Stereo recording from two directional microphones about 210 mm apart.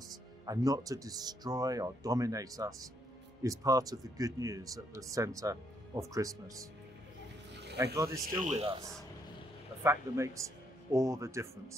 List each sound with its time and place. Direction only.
0.5 s speech: 15° right (ahead or behind)
7.8 s speech: 15° right (ahead or behind)
8.4 s speech: 30° right (ahead or behind)
9.8 s speech: 15° right (ahead or behind)